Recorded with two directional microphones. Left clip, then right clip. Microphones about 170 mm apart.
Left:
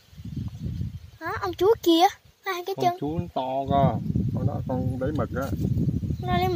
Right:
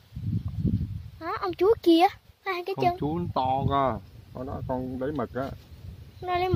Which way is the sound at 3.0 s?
25° right (ahead or behind).